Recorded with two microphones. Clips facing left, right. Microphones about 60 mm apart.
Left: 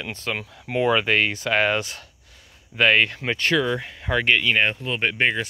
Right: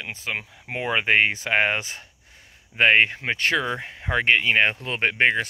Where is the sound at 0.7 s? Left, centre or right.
Right.